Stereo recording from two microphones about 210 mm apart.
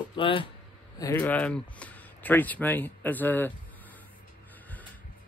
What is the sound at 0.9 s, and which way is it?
Speech, 15° left (ahead or behind).